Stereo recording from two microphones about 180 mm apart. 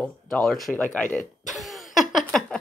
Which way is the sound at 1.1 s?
Centre (ahead or behind).